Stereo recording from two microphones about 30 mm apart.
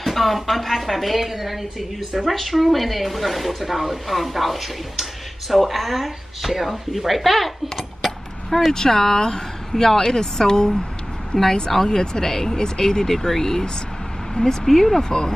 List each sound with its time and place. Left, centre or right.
0.0 s speech: centre
8.7 s speech: centre